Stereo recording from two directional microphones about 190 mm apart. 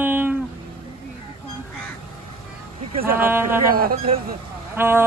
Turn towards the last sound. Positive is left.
turn(degrees=-10)  # may be behind; listen again after turning